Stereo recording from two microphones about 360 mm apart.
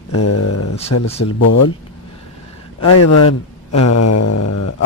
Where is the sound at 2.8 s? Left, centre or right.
Left.